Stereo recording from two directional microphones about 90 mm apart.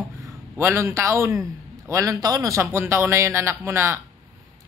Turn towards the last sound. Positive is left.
turn(degrees=-30)  # may be behind; listen again after turning